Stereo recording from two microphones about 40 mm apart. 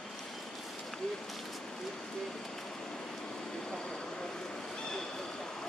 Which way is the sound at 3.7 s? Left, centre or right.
Centre.